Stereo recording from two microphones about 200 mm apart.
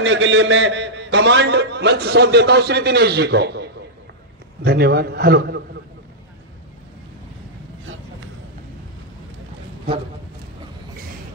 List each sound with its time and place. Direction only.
0.0 s a man's voice: 70° right (ahead or behind); by 5.6 s 50° right (ahead or behind)